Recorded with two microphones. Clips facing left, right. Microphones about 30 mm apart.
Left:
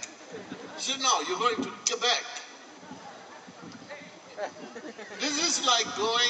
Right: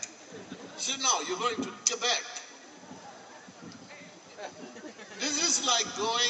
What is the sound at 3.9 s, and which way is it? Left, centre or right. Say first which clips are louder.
Speech: left 6 dB; centre.